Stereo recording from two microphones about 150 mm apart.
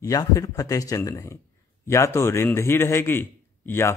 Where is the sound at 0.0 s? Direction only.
25° left (ahead or behind).